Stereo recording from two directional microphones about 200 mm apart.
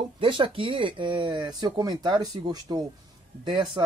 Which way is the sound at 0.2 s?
25° right (ahead or behind).